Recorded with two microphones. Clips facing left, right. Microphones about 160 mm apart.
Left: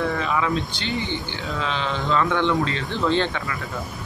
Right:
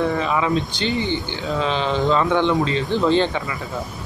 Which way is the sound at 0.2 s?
20° right (ahead or behind).